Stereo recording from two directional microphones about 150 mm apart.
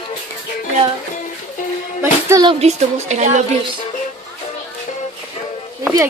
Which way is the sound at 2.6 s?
50° right (ahead or behind).